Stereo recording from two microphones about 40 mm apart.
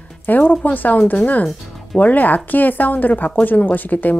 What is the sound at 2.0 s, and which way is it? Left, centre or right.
Speech, left.